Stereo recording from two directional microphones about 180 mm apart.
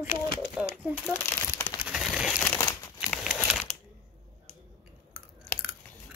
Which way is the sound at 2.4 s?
15° left (ahead or behind).